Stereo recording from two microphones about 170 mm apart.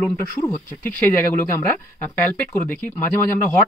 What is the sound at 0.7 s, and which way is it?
Speech, 10° left (ahead or behind).